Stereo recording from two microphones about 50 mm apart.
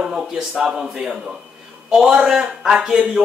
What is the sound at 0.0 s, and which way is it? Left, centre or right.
Speech, centre.